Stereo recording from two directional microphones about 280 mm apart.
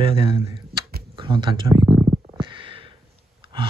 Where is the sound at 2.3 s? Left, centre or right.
Centre.